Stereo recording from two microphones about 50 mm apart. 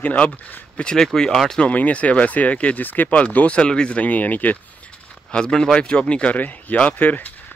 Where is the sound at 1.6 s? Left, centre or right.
Left.